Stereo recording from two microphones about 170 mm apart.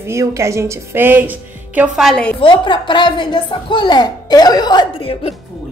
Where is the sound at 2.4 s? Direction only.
30° left (ahead or behind).